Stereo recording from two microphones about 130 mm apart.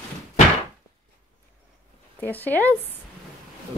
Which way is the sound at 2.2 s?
15° left (ahead or behind).